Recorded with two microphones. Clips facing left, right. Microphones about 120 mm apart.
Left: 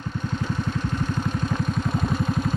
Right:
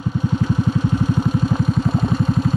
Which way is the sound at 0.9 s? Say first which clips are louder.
Right 7 dB; 5° right (ahead or behind).